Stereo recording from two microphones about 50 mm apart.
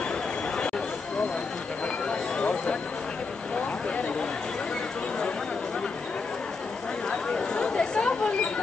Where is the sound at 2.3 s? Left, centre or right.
Left.